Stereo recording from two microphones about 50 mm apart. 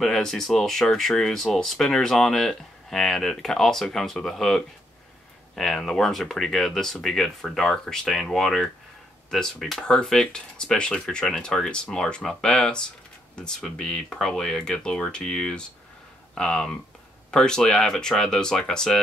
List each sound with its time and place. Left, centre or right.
0.0 s speech: centre
10.0 s speech: centre